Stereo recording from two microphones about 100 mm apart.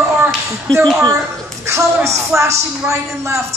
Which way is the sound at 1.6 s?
30° right (ahead or behind).